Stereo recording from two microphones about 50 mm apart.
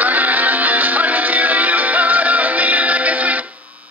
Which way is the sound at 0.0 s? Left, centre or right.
Right.